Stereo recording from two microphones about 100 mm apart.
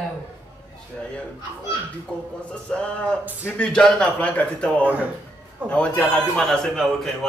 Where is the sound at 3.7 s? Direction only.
5° left (ahead or behind).